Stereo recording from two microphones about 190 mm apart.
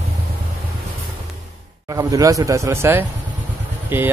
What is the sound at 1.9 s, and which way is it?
Speech, 20° right (ahead or behind).